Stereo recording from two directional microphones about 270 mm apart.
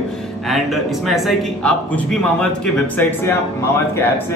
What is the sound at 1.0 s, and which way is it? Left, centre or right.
Speech, centre.